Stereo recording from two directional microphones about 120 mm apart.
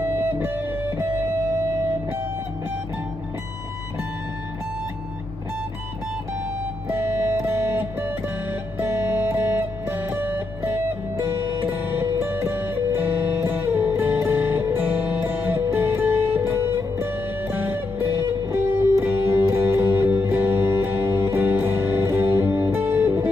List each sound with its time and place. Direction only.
0.0 s music: 20° right (ahead or behind)
6.9 s music: 20° right (ahead or behind)